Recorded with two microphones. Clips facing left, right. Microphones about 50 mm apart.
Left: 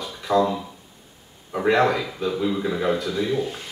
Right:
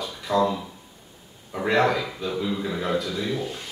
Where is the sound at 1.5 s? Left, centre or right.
Centre.